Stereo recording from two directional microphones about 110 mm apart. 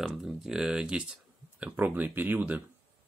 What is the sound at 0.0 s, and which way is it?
Speech, 5° right (ahead or behind).